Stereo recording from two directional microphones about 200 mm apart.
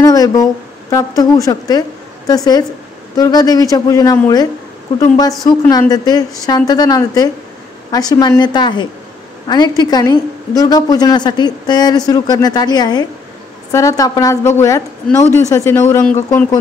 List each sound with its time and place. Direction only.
0.0 s a woman's voice: 20° left (ahead or behind)
15.5 s a woman's voice: 15° left (ahead or behind)